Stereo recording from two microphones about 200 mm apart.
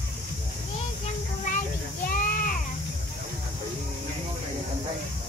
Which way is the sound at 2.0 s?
45° left (ahead or behind).